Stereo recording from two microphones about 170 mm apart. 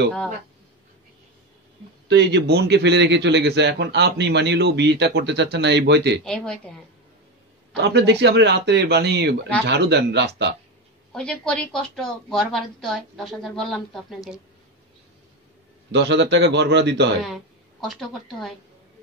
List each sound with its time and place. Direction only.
2.0 s a man's voice: 85° right
6.2 s a woman's voice: 5° left (ahead or behind)
7.7 s speech: 90° right
11.1 s a woman's voice: 5° left (ahead or behind)
15.9 s speech: 90° right
17.2 s a sound: centre (ahead or behind)